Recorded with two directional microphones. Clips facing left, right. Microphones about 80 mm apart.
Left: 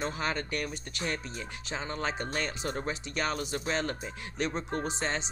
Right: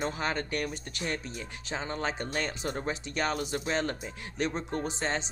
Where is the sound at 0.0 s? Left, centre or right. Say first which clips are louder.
Right 1 dB; right.